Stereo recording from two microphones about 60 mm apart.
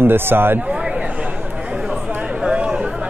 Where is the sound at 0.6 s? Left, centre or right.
Right.